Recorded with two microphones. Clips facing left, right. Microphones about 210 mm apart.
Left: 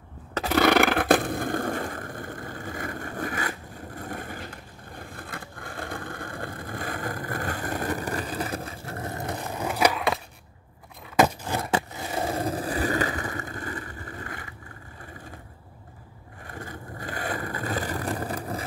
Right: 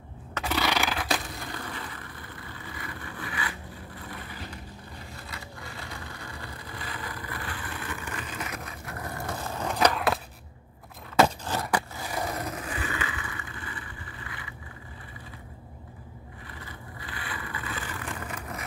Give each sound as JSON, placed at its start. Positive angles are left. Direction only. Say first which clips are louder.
{"t": 0.3, "sound": "a sound", "louder": "left 8 dB", "side_deg": 45}
{"t": 11.1, "sound": "scrape", "louder": "left 1 dB", "side_deg": 15}
{"t": 11.6, "sound": "skateboard", "louder": "left 2 dB", "side_deg": 25}
{"t": 16.4, "sound": "vehicle", "louder": "left 8 dB", "side_deg": 45}